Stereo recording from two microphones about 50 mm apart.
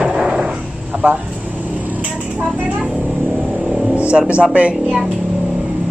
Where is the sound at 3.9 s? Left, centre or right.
Right.